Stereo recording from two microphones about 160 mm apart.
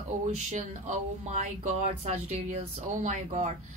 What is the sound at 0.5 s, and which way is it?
Speech, 50° right (ahead or behind).